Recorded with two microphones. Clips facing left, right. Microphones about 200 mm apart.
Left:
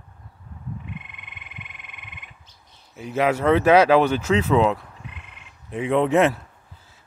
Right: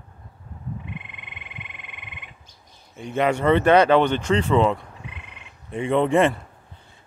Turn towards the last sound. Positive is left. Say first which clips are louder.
# right 2 dB
turn(degrees=5)  # may be behind; listen again after turning